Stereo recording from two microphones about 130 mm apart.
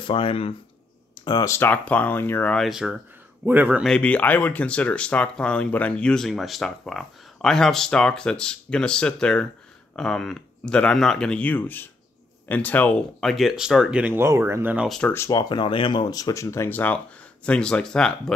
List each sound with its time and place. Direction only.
0.0 s speech: 45° left (ahead or behind)
1.5 s speech: 15° left (ahead or behind)
2.5 s speech: centre (ahead or behind)
3.8 s speech: 5° left (ahead or behind); by 14.9 s 15° right (ahead or behind)
14.9 s speech: 5° left (ahead or behind)
15.1 s speech: 25° left (ahead or behind); by 18.3 s 5° left (ahead or behind)